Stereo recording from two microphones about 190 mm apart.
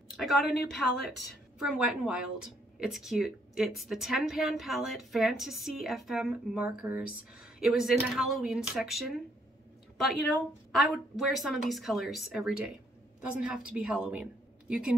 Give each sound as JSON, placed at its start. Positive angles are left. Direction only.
{"t": 0.1, "sound": "a woman's voice", "side_deg": 0}